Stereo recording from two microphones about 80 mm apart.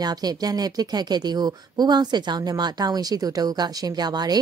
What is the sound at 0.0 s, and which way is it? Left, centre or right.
A woman's voice, right.